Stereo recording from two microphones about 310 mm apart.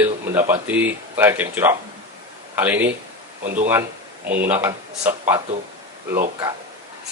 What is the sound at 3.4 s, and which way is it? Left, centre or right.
Speech, right.